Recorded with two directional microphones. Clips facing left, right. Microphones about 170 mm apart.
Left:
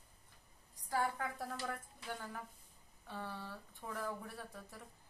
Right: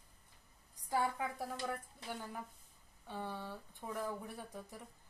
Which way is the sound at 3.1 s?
15° right (ahead or behind).